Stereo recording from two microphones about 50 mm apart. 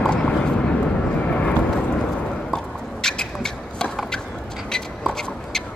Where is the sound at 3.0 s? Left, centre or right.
Centre.